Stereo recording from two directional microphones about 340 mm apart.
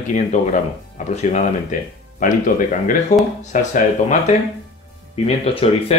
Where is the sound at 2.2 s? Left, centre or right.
Left.